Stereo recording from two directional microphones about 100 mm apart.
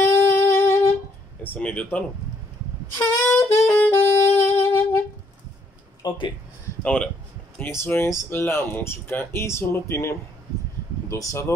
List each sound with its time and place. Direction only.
0.0 s music: 25° left (ahead or behind)
1.4 s speech: 15° left (ahead or behind)
3.0 s saxophone: 25° left (ahead or behind)
6.0 s speech: 40° left (ahead or behind)
6.8 s speech: 10° left (ahead or behind)
7.8 s speech: 25° left (ahead or behind)